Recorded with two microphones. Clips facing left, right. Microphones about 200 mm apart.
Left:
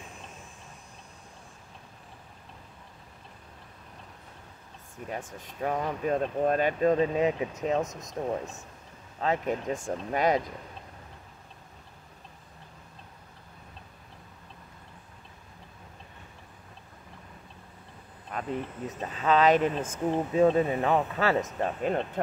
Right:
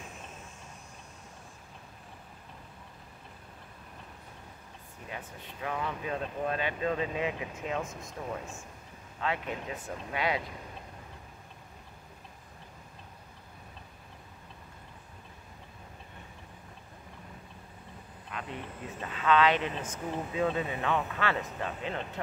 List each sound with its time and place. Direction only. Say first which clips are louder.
5.4 s speech: left 5 dB; 40° left (ahead or behind)
18.3 s a sound: left 5 dB; 40° left (ahead or behind)
18.9 s speech: left 1 dB; 40° left (ahead or behind)